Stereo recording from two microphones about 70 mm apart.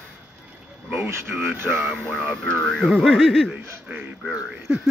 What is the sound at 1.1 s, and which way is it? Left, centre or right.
Speech, right.